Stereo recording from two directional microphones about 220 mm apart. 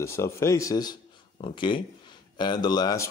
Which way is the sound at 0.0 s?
10° left (ahead or behind).